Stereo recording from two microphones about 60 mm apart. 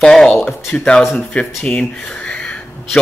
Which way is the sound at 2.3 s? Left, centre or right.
Centre.